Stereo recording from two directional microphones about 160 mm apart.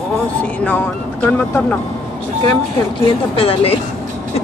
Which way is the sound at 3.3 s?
35° left (ahead or behind).